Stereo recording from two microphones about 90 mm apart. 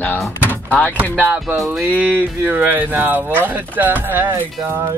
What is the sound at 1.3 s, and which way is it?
Music, 5° right (ahead or behind).